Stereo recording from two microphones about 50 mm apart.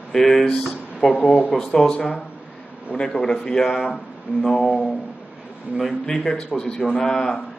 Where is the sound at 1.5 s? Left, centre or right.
Centre.